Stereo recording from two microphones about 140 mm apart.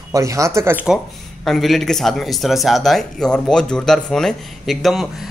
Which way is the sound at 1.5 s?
Centre (ahead or behind).